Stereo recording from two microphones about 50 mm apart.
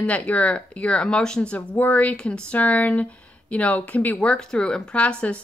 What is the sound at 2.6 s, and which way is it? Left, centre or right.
Speech, left.